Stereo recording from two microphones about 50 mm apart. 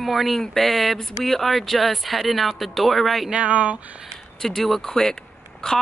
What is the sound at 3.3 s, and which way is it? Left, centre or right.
Speech, right.